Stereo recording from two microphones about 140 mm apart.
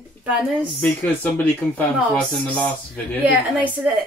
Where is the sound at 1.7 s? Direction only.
10° left (ahead or behind).